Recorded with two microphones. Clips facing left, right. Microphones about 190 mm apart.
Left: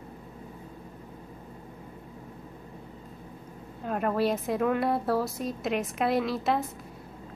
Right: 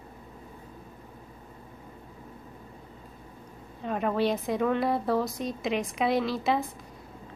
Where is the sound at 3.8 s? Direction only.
Centre (ahead or behind).